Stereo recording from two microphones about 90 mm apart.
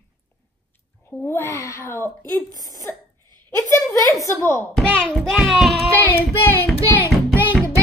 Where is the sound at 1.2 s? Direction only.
30° left (ahead or behind).